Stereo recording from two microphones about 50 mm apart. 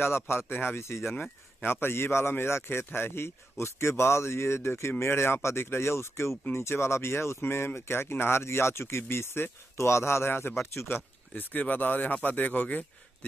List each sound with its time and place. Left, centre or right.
0.0 s speech: left
0.5 s speech: left
0.7 s a man's voice: left
1.6 s a man's voice: left
10.7 s a man's voice: left
11.3 s speech: left